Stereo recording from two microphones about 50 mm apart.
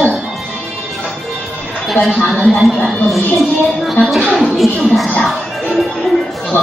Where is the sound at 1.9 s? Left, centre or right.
Centre.